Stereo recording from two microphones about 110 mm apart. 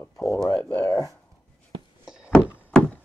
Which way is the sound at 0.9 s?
30° left (ahead or behind).